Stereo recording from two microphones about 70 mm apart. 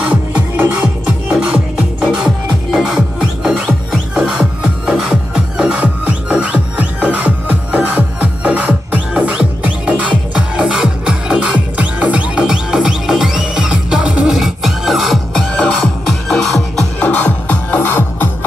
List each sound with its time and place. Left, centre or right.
0.7 s music: centre
17.0 s music: centre